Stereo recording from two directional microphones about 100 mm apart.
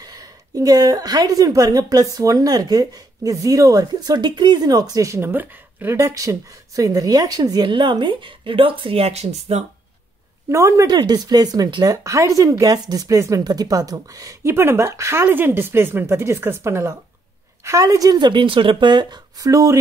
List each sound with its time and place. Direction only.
0.0 s a woman's voice: 40° right (ahead or behind); by 5.9 s 20° right (ahead or behind)
5.9 s speech: 35° right (ahead or behind)
7.6 s speech: 50° right (ahead or behind); by 9.7 s 90° right
10.5 s speech: 30° right (ahead or behind)
14.5 s a woman's voice: 25° right (ahead or behind)